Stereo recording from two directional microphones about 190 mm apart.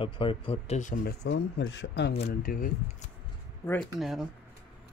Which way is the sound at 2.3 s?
50° left (ahead or behind).